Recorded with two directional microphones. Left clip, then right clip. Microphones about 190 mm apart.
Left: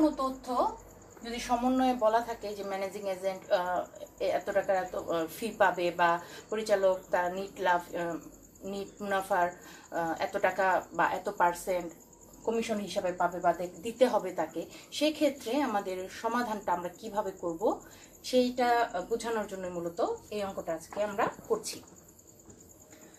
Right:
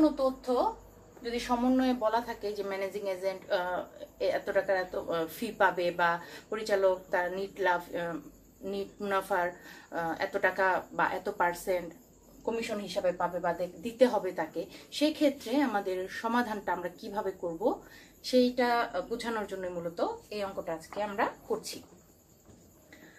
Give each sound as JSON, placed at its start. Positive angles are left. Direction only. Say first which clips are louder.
{"t": 1.3, "sound": "speech", "louder": "even", "side_deg": -10}